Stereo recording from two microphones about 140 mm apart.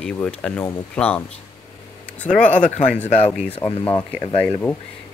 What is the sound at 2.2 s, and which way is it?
Speech, 65° left (ahead or behind).